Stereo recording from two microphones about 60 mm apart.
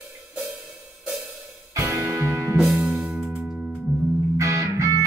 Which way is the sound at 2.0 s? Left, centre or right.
Right.